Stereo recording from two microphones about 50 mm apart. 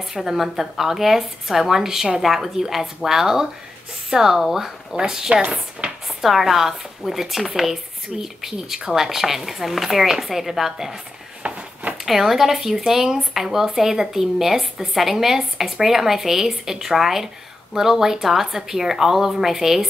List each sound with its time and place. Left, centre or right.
0.0 s speech: centre
11.4 s a sound: right
12.0 s speech: centre